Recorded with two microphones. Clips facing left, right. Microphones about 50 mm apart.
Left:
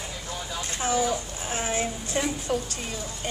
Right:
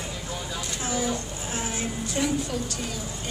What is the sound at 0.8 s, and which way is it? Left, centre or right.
Speech, left.